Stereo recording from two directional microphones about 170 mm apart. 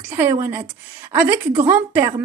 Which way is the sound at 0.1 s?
20° right (ahead or behind).